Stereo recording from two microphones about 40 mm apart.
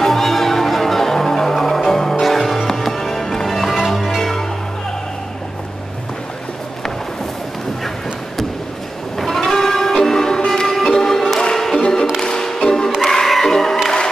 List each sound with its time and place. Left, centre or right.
0.0 s music: centre
9.2 s music: centre